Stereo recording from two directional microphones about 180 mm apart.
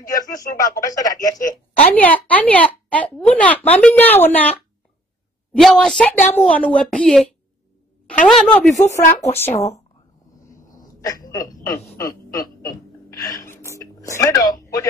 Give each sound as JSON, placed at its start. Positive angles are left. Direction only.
{"t": 0.0, "sound": "speech", "side_deg": 20}
{"t": 1.9, "sound": "a woman's voice", "side_deg": 10}
{"t": 5.6, "sound": "a woman's voice", "side_deg": 0}
{"t": 8.3, "sound": "a woman's voice", "side_deg": 0}
{"t": 8.9, "sound": "a woman's voice", "side_deg": 15}
{"t": 10.8, "sound": "speech", "side_deg": 20}
{"t": 13.1, "sound": "a sound", "side_deg": 20}